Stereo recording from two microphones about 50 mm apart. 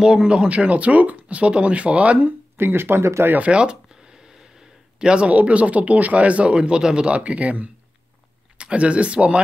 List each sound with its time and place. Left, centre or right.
0.0 s speech: centre
2.5 s speech: right
3.0 s speech: right
3.4 s speech: centre
5.0 s speech: right